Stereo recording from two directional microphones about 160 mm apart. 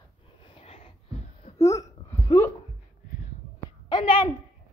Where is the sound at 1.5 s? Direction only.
20° left (ahead or behind).